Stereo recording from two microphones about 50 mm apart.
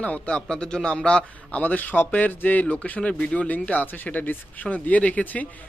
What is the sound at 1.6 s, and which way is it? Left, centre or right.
Speech, left.